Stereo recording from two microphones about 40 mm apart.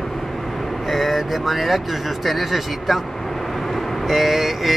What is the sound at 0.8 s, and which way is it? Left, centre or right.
Speech, centre.